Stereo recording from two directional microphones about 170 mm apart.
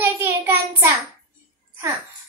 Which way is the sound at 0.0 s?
15° right (ahead or behind).